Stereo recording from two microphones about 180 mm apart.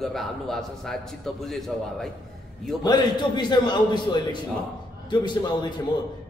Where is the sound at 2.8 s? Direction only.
25° left (ahead or behind).